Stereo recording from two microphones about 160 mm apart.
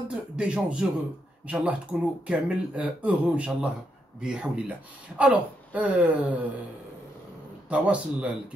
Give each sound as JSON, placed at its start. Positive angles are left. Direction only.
{"t": 0.1, "sound": "speech", "side_deg": -5}
{"t": 7.7, "sound": "speech", "side_deg": -10}